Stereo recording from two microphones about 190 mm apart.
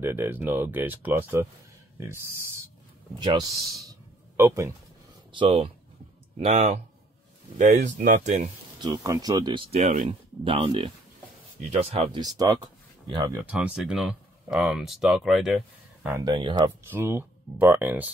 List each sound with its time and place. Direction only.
0.0 s speech: 10° right (ahead or behind)
5.3 s speech: 25° right (ahead or behind)
8.8 s speech: 20° right (ahead or behind)
9.7 s speech: 40° right (ahead or behind)
12.2 s speech: 20° right (ahead or behind)
13.5 s speech: 5° right (ahead or behind)
16.3 s speech: 25° right (ahead or behind)
16.9 s speech: 10° right (ahead or behind)